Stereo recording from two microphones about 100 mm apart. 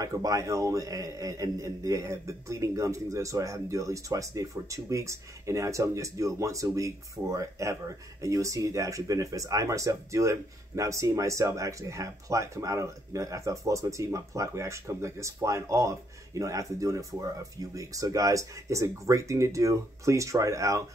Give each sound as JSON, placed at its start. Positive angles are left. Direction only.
{"t": 0.0, "sound": "speech", "side_deg": -35}